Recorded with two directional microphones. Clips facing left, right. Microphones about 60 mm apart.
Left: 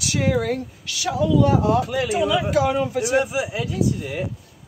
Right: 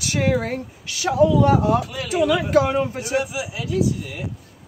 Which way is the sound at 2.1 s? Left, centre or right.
Right.